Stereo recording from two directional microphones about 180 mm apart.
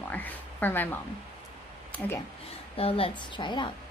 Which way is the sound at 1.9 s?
15° left (ahead or behind).